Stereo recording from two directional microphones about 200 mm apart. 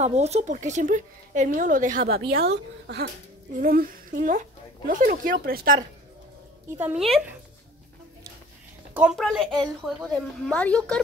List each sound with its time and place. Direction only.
0.0 s a woman's voice: 35° right (ahead or behind)
6.8 s a woman's voice: 5° right (ahead or behind)
8.9 s a woman's voice: 5° right (ahead or behind)